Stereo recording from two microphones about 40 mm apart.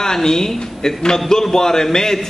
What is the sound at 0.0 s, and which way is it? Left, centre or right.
A man's voice, centre.